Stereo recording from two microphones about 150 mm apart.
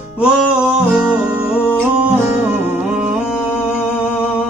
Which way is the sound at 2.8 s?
5° right (ahead or behind).